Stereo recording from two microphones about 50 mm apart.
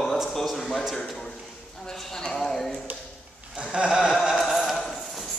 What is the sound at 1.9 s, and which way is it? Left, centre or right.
Clip-clop, centre.